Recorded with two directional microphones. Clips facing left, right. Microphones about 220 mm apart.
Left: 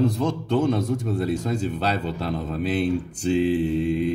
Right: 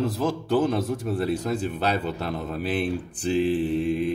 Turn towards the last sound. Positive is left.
turn(degrees=-5)  # may be behind; listen again after turning